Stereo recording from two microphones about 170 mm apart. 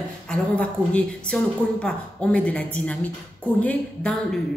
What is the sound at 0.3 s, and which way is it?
A woman's voice, 5° left (ahead or behind).